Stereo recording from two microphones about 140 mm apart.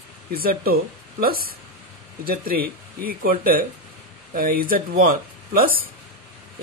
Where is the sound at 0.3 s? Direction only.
90° right.